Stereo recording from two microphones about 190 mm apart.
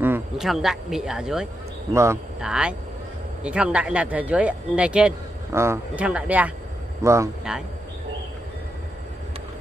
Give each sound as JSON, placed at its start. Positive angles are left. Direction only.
{"t": 0.0, "sound": "a sound", "side_deg": -10}
{"t": 0.5, "sound": "speech", "side_deg": 0}
{"t": 7.5, "sound": "speech", "side_deg": -5}